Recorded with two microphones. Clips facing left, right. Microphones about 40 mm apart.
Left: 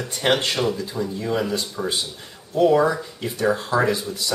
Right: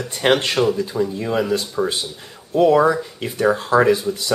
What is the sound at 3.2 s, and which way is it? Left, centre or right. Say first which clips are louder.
Speech: right 3 dB; right.